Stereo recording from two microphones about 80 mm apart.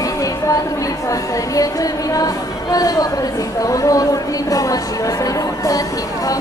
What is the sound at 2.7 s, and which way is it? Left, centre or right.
Speech, left.